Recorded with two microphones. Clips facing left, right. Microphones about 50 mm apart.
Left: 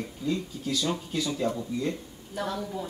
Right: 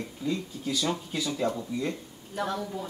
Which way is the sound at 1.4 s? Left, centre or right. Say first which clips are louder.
Even; centre.